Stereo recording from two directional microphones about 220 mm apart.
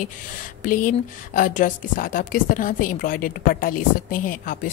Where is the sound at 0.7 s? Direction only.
35° left (ahead or behind).